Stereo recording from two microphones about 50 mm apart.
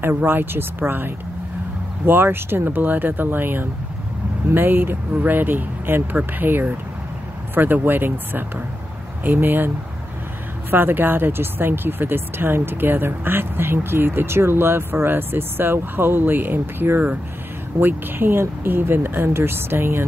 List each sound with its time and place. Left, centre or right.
0.1 s speech: right
10.7 s speech: right